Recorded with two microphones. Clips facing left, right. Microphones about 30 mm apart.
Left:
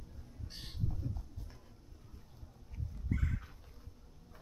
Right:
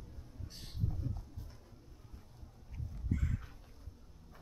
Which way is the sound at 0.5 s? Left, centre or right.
Left.